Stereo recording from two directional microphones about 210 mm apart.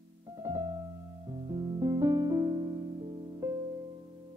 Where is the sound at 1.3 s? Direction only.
20° right (ahead or behind).